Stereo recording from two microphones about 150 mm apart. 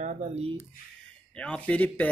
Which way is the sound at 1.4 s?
10° left (ahead or behind).